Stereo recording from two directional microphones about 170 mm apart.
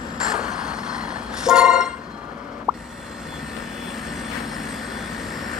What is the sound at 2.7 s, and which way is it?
Plop, 5° right (ahead or behind).